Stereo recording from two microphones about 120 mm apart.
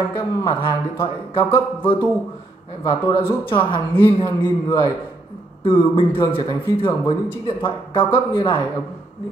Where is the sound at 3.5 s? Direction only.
45° left (ahead or behind).